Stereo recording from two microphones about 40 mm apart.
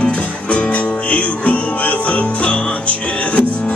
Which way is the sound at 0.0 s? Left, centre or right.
Left.